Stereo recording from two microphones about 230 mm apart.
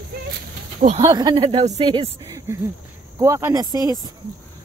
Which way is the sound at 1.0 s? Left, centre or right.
Centre.